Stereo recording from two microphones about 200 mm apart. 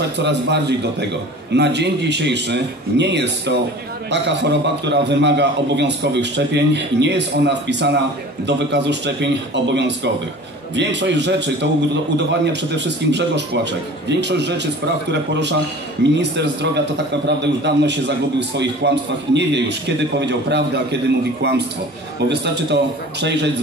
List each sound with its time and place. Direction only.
0.2 s a man's voice: 60° right (ahead or behind)